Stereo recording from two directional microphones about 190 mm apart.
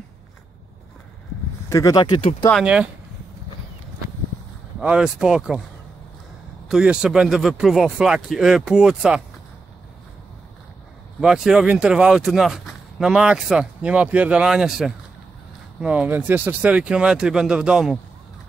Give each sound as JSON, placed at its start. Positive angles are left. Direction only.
{"t": 1.7, "sound": "speech", "side_deg": 20}
{"t": 2.6, "sound": "speech", "side_deg": -5}
{"t": 4.7, "sound": "speech", "side_deg": -5}
{"t": 6.7, "sound": "speech", "side_deg": -5}
{"t": 11.1, "sound": "speech", "side_deg": 0}